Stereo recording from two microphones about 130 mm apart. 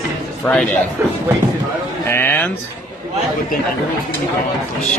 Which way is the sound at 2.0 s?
15° left (ahead or behind).